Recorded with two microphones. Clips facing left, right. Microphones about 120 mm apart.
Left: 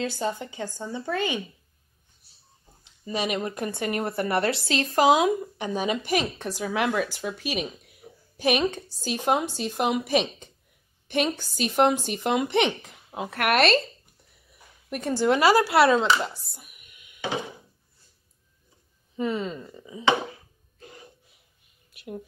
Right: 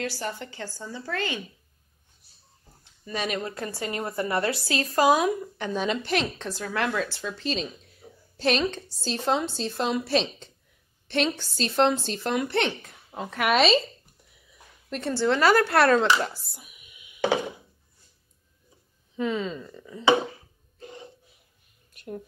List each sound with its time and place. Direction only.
0.0 s a woman's voice: 20° left (ahead or behind)
2.8 s a woman's voice: 15° left (ahead or behind)
13.3 s speech: centre (ahead or behind)
14.9 s a woman's voice: 15° left (ahead or behind)
19.1 s speech: 5° left (ahead or behind)